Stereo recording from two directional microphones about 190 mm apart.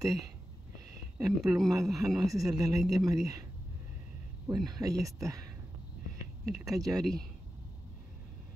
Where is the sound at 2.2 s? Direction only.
20° right (ahead or behind).